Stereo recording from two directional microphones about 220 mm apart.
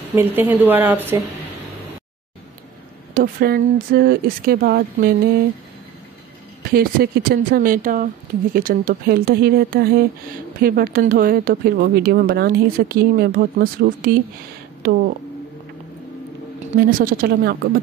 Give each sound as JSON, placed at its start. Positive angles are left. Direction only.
{"t": 0.1, "sound": "speech", "side_deg": -10}
{"t": 3.2, "sound": "speech", "side_deg": -40}
{"t": 6.7, "sound": "speech", "side_deg": -45}
{"t": 16.7, "sound": "speech", "side_deg": -40}